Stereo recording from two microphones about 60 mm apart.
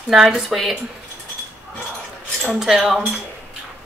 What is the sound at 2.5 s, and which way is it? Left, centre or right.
Speech, centre.